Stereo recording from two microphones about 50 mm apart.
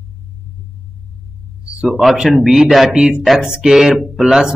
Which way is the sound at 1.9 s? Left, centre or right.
Centre.